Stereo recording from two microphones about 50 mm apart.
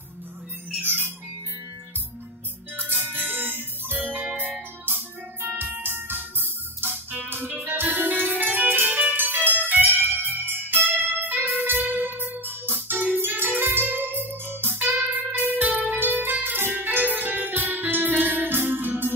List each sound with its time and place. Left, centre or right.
0.8 s music: right
2.8 s music: right
16.0 s music: right